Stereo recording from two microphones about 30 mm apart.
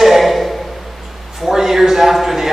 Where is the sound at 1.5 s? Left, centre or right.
Centre.